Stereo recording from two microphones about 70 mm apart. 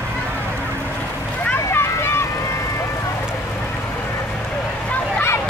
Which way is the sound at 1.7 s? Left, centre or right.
Left.